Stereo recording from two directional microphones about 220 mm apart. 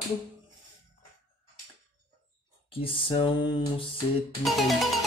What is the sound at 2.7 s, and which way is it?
Speech, 25° left (ahead or behind).